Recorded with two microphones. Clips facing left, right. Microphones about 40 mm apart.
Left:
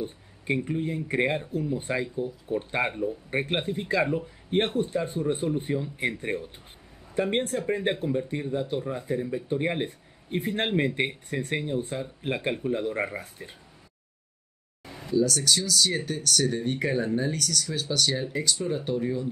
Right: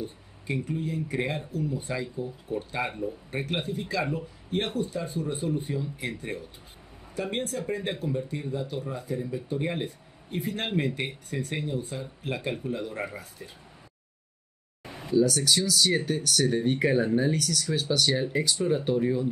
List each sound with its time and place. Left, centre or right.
0.0 s speech: left
4.5 s speech: left
15.0 s speech: centre